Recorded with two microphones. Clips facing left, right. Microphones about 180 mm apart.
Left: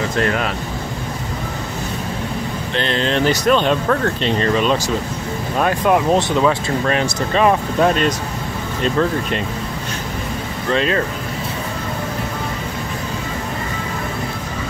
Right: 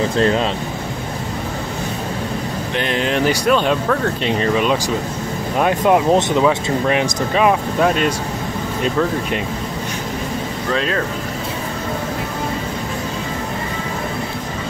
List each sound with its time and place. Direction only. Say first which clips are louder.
0.2 s speech: right 3 dB; 25° right (ahead or behind)
2.7 s speech: even; 10° right (ahead or behind)
10.7 s speech: left 3 dB; centre (ahead or behind)